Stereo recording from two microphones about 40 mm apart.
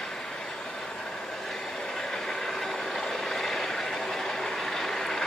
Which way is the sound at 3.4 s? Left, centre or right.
Centre.